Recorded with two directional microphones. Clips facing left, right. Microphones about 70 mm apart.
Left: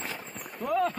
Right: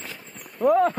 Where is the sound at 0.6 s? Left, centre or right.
Right.